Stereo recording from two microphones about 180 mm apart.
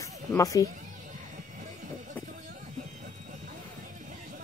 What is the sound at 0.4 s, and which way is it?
Speech, 20° left (ahead or behind).